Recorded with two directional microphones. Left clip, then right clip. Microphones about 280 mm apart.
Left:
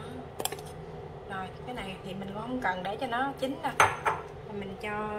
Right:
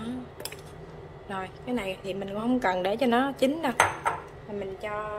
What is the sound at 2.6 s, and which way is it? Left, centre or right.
A woman's voice, right.